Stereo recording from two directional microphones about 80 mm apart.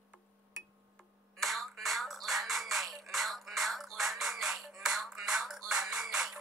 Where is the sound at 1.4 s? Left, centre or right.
Centre.